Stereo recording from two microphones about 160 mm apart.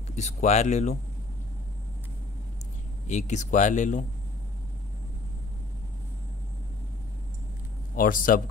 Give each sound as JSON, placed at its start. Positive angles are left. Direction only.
{"t": 0.1, "sound": "speech", "side_deg": 45}
{"t": 3.1, "sound": "speech", "side_deg": 45}
{"t": 7.9, "sound": "a man's voice", "side_deg": 60}